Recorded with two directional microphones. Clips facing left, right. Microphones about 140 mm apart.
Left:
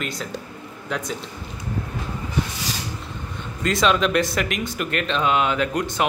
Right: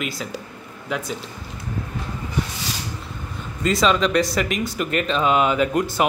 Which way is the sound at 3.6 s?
Centre (ahead or behind).